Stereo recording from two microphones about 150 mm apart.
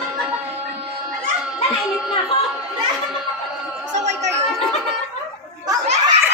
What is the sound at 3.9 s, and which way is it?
Chatter, 50° right (ahead or behind).